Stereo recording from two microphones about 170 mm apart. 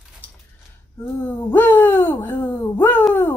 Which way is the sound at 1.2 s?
15° left (ahead or behind).